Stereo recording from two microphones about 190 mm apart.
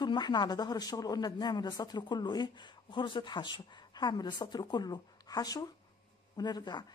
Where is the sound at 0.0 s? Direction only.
25° left (ahead or behind).